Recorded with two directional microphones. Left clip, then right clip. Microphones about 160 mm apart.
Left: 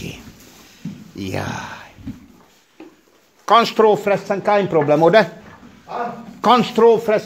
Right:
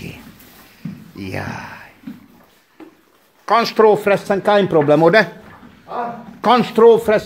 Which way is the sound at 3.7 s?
10° right (ahead or behind).